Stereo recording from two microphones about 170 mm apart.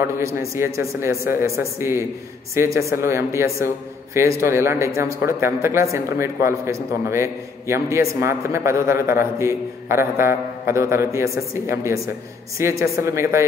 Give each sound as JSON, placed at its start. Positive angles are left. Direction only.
{"t": 0.2, "sound": "a man's voice", "side_deg": -15}